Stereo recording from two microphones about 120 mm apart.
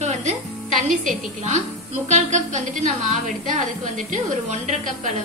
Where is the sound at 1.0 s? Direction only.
80° right.